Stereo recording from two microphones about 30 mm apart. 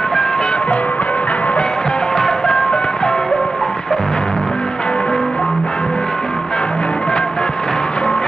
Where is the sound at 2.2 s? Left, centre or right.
Left.